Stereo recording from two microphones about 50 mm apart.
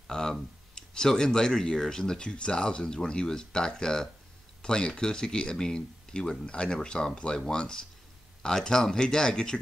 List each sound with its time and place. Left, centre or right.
0.1 s speech: centre